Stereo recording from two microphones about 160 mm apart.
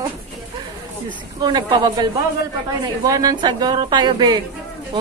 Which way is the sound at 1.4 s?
25° right (ahead or behind).